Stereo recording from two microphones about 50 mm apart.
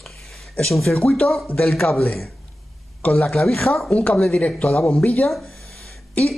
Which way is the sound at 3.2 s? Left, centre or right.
Centre.